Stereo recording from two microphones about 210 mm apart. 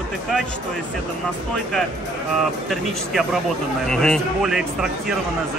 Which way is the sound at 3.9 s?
Centre (ahead or behind).